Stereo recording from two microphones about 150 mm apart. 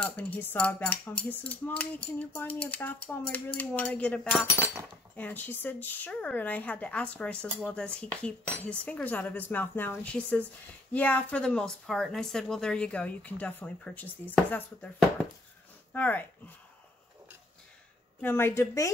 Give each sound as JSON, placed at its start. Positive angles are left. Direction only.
{"t": 0.0, "sound": "speech", "side_deg": 10}
{"t": 15.9, "sound": "speech", "side_deg": 10}
{"t": 18.2, "sound": "speech", "side_deg": 15}